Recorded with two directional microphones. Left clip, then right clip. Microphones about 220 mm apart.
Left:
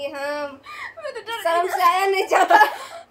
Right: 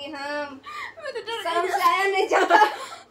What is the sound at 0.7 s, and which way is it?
Speech, 10° left (ahead or behind).